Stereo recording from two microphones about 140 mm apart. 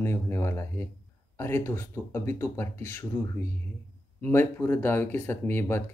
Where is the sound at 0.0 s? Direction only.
20° left (ahead or behind).